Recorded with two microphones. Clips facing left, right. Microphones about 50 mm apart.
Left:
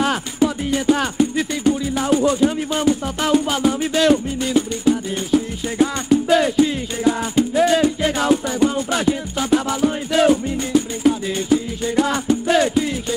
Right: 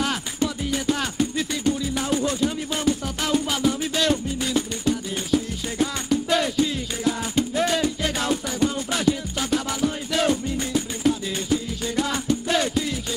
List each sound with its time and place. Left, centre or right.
0.4 s music: centre
0.7 s music: centre
1.1 s music: centre